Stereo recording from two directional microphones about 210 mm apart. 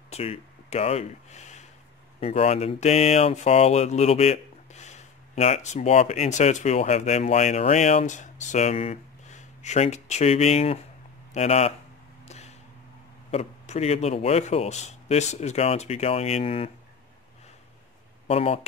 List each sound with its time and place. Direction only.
0.1 s speech: 30° left (ahead or behind)
12.3 s arrow: 30° left (ahead or behind)
13.3 s speech: 30° left (ahead or behind)
18.2 s speech: 30° left (ahead or behind)